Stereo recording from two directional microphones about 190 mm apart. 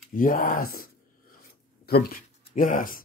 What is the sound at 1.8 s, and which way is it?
Speech, 55° left (ahead or behind).